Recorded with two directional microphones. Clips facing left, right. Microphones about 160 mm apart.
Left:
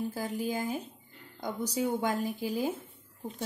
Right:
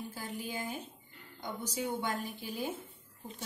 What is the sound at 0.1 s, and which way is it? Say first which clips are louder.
Speech: left 7 dB; 40° left (ahead or behind).